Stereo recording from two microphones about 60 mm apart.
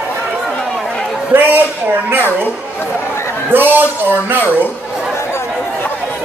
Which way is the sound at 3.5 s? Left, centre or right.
Right.